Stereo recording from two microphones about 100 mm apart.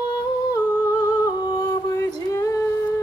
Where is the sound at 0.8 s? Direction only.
40° left (ahead or behind).